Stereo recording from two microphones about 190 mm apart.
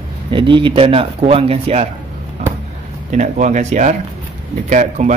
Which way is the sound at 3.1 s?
40° right (ahead or behind).